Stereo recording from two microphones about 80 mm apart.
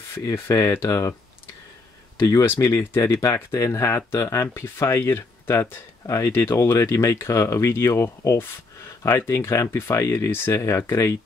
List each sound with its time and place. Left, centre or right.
0.2 s speech: left
2.1 s speech: left